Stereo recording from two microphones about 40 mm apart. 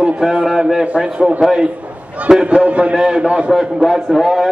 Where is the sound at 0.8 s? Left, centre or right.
Right.